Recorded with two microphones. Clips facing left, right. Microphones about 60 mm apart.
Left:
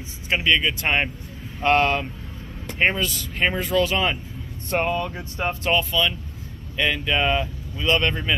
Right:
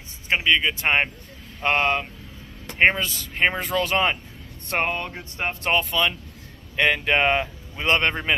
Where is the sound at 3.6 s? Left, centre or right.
Right.